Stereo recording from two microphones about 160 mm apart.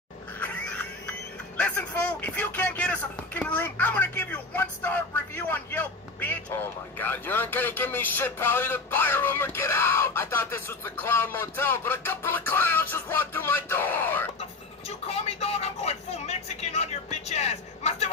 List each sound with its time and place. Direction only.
1.6 s speech: 10° left (ahead or behind)
14.9 s vehicle: 40° left (ahead or behind)